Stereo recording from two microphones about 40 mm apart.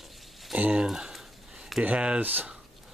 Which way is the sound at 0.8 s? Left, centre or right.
Centre.